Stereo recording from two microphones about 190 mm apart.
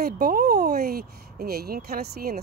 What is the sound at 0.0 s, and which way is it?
Speech, 50° right (ahead or behind).